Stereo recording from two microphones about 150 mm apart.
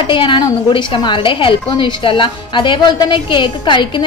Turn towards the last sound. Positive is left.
turn(degrees=30)  # may be behind; listen again after turning